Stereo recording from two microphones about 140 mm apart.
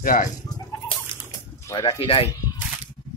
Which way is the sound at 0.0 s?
80° left.